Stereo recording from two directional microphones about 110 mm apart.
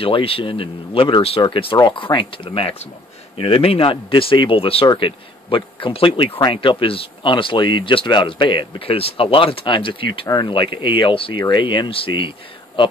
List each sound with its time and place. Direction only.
0.0 s speech: 55° left (ahead or behind)